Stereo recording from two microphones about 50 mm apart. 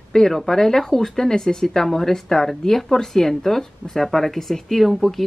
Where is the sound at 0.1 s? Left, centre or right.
Centre.